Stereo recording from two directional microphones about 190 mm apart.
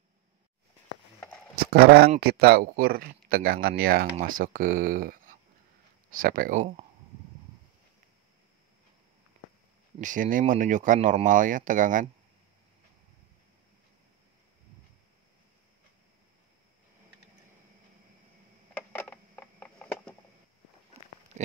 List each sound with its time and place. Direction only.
1.7 s speech: 55° right (ahead or behind)
9.9 s speech: 45° right (ahead or behind)
18.8 s a sound: 10° left (ahead or behind)